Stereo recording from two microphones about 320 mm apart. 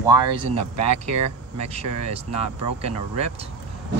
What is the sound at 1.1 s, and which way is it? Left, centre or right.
Speech, centre.